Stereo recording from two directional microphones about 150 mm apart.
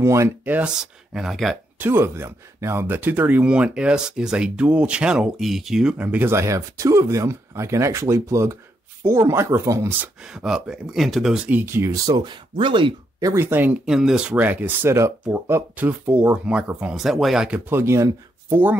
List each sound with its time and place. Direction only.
0.0 s speech: 20° right (ahead or behind); by 1.6 s centre (ahead or behind)
1.8 s speech: 15° right (ahead or behind)
10.2 s speech: 5° right (ahead or behind); by 12.9 s 35° right (ahead or behind)
13.2 s speech: 15° right (ahead or behind)
17.6 s speech: 15° right (ahead or behind)